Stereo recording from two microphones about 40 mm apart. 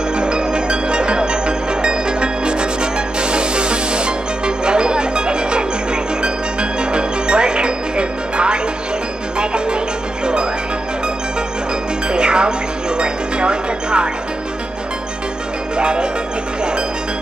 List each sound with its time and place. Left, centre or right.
0.1 s music: right
12.1 s music: right
15.8 s music: right